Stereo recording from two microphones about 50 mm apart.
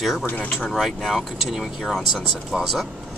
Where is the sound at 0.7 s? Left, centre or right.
Centre.